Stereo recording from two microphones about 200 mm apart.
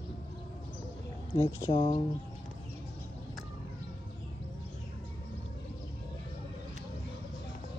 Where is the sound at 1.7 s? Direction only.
35° left (ahead or behind).